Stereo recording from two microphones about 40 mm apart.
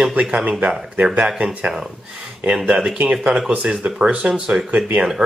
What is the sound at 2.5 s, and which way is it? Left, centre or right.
Speech, right.